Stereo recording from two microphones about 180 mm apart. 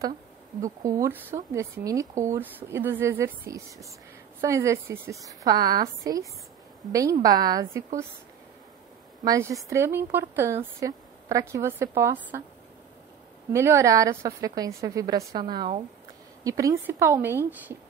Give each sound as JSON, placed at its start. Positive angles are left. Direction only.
{"t": 0.8, "sound": "a woman's voice", "side_deg": -15}
{"t": 9.2, "sound": "a woman's voice", "side_deg": -20}
{"t": 13.5, "sound": "a woman's voice", "side_deg": -15}
{"t": 16.4, "sound": "speech", "side_deg": -20}